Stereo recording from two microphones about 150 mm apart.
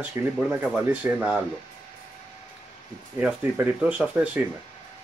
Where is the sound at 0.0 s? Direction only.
15° right (ahead or behind).